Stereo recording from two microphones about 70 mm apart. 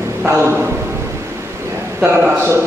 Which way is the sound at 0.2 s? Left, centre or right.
Right.